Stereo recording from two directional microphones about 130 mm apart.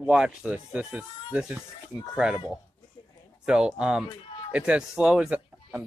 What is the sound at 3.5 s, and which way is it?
Speech, 5° right (ahead or behind).